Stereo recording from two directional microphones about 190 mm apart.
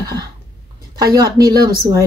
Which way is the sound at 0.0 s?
20° right (ahead or behind).